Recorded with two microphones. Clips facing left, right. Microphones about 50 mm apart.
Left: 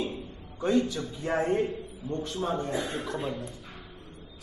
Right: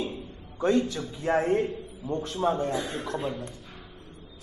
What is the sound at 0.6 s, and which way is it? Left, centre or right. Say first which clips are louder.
A man's voice: right 1 dB; centre.